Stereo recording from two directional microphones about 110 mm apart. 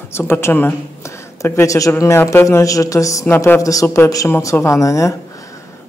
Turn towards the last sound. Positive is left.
turn(degrees=30)  # may be behind; listen again after turning